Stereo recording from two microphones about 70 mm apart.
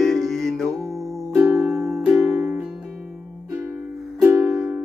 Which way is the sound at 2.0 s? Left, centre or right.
Centre.